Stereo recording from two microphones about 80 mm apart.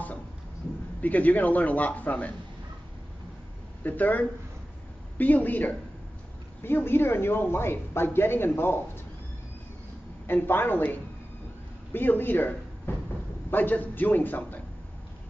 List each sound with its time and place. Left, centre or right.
1.0 s a woman's voice: centre
3.8 s a woman's voice: left
10.2 s a woman's voice: left